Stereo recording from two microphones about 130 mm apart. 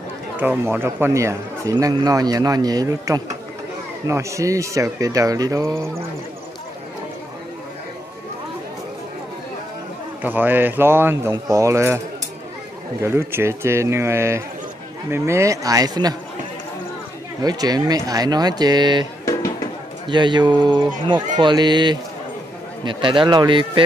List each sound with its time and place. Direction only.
0.4 s speech: 15° right (ahead or behind)
10.2 s a man's voice: 15° right (ahead or behind)
13.0 s speech: 20° right (ahead or behind)
17.4 s speech: 30° right (ahead or behind)
19.2 s music: 25° left (ahead or behind)
20.1 s speech: 35° right (ahead or behind)